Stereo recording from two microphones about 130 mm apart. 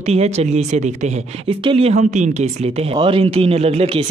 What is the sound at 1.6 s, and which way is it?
Speech, 45° right (ahead or behind).